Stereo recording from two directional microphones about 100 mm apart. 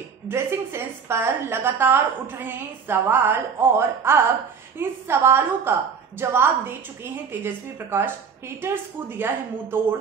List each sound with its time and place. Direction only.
0.3 s a woman's voice: 25° right (ahead or behind)